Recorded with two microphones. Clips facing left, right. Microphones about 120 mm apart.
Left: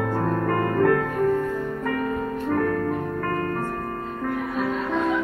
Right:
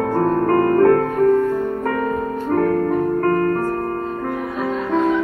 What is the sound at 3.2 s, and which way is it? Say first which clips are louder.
Music: right 9 dB; 45° right (ahead or behind).